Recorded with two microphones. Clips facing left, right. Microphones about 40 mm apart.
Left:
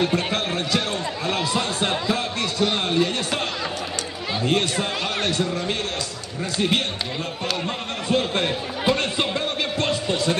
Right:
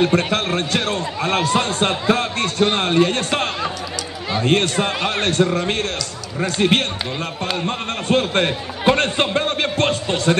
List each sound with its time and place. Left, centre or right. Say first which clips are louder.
0.0 s a man's voice: right 5 dB; right